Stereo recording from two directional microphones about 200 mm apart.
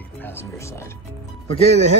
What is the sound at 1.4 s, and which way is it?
Speech, 30° left (ahead or behind).